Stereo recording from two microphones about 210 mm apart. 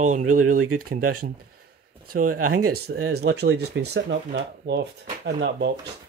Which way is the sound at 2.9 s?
50° right (ahead or behind).